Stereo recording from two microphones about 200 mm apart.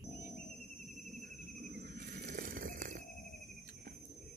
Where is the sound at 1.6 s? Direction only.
45° right (ahead or behind).